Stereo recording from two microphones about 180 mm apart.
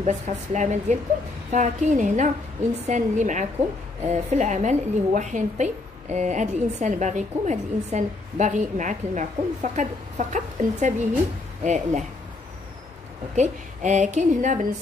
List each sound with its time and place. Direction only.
0.0 s a woman's voice: 40° right (ahead or behind)
13.4 s a woman's voice: 40° right (ahead or behind)